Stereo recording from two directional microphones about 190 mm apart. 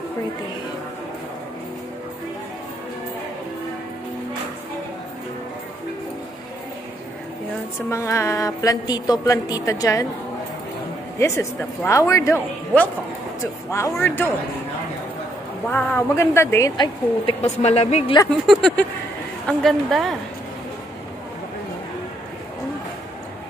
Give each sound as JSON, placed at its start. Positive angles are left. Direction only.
{"t": 7.9, "sound": "a woman's voice", "side_deg": 15}
{"t": 11.1, "sound": "a woman's voice", "side_deg": 15}
{"t": 15.7, "sound": "a woman's voice", "side_deg": 10}
{"t": 18.5, "sound": "a woman's voice", "side_deg": 5}